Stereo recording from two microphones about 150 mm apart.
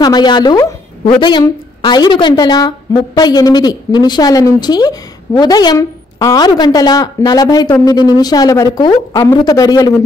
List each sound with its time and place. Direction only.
0.0 s a woman's voice: 30° left (ahead or behind)
1.8 s a woman's voice: 30° left (ahead or behind)